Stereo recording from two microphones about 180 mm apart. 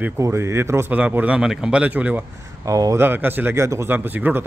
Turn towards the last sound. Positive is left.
turn(degrees=-10)  # may be behind; listen again after turning